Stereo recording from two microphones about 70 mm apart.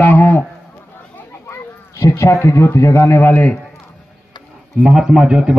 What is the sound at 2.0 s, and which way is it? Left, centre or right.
A man's voice, left.